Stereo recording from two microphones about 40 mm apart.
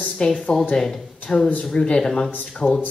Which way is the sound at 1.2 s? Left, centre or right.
Left.